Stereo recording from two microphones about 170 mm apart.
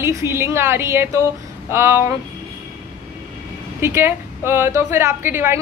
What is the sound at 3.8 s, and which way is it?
A woman's voice, 15° right (ahead or behind).